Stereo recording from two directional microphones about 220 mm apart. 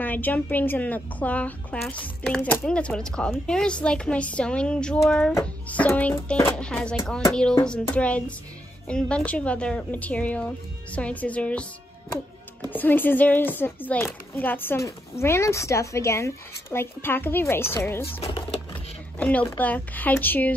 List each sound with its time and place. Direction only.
0.0 s a woman's voice: 10° left (ahead or behind)
12.6 s speech: 10° left (ahead or behind)
18.2 s a sound: 25° left (ahead or behind)
19.1 s speech: 5° left (ahead or behind)